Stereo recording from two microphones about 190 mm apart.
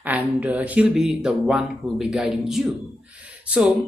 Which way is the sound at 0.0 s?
10° right (ahead or behind).